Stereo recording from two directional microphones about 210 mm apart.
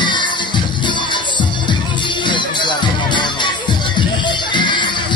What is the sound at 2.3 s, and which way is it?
Music, 20° left (ahead or behind).